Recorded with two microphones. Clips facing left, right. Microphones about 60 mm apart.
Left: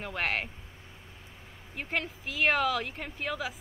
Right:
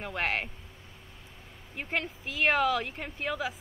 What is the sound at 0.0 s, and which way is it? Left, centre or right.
Speech, centre.